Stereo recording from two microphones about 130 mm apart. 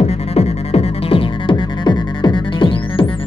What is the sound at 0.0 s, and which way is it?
Music, 55° left (ahead or behind).